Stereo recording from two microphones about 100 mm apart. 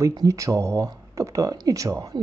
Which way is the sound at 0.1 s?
35° right (ahead or behind).